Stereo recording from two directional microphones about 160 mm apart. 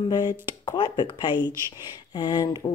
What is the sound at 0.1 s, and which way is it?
A woman's voice, 25° left (ahead or behind).